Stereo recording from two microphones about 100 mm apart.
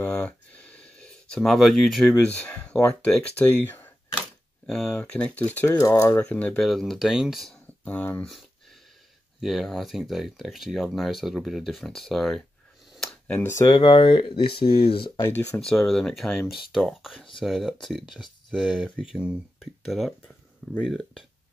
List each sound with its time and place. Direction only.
0.0 s a sound: 10° left (ahead or behind)
2.1 s speech: 15° left (ahead or behind)
4.6 s speech: 5° left (ahead or behind)
6.6 s speech: centre (ahead or behind)
7.8 s speech: 15° left (ahead or behind)
9.4 s speech: centre (ahead or behind)
12.9 s a sound: 5° left (ahead or behind)
13.7 s speech: 55° left (ahead or behind)
15.6 s speech: 5° left (ahead or behind)